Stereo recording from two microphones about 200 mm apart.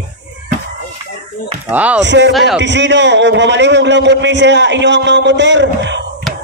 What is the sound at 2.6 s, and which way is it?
A man's voice, 65° right (ahead or behind).